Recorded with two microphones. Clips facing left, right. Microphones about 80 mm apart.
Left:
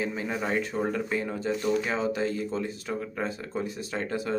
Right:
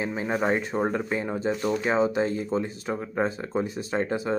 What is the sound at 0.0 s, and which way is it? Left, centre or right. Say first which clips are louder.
Speech: right 4 dB; right.